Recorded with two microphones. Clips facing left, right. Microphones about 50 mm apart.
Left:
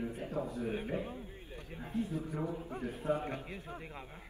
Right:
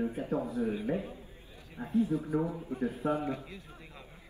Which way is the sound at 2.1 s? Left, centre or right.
Right.